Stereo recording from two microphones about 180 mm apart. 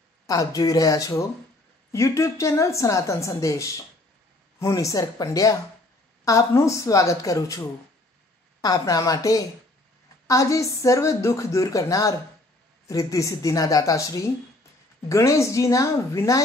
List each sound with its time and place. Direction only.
0.3 s a woman's voice: 20° left (ahead or behind)
15.0 s a woman's voice: 15° left (ahead or behind)